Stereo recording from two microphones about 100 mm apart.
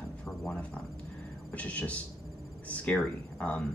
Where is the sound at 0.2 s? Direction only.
10° left (ahead or behind).